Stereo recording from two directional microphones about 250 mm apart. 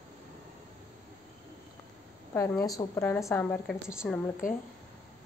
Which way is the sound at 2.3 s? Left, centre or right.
Centre.